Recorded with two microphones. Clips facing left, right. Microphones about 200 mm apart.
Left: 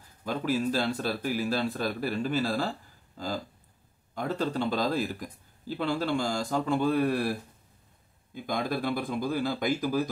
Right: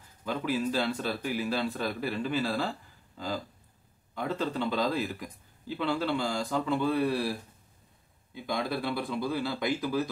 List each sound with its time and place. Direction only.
0.2 s speech: 40° left (ahead or behind)
4.1 s speech: 45° left (ahead or behind)
8.4 s speech: 50° left (ahead or behind)